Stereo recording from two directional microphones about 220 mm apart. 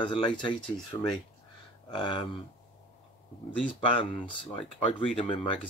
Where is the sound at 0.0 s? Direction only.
25° left (ahead or behind).